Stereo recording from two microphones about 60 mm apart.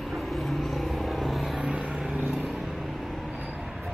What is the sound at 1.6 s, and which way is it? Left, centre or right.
Vehicle, centre.